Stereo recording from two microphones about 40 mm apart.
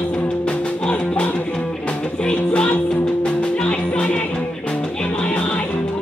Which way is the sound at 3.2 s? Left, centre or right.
Left.